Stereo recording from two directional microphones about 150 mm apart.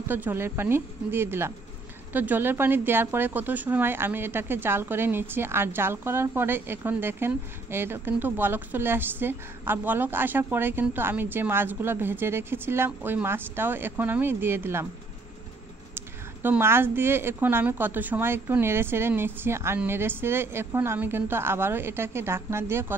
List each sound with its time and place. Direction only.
0.1 s speech: 15° right (ahead or behind)
16.4 s speech: 15° right (ahead or behind)